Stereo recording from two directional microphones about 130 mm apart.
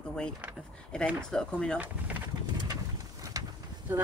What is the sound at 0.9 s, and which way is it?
Speech, 5° left (ahead or behind).